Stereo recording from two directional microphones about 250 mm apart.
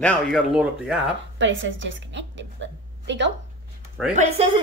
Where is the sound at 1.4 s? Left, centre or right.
Right.